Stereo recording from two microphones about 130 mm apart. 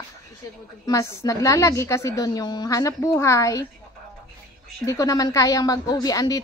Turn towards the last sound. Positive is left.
turn(degrees=30)  # may be behind; listen again after turning